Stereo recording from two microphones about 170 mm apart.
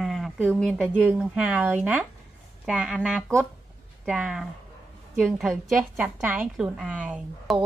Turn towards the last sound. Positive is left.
turn(degrees=-5)  # may be behind; listen again after turning